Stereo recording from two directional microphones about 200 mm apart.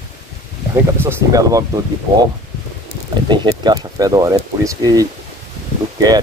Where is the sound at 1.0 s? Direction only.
15° right (ahead or behind).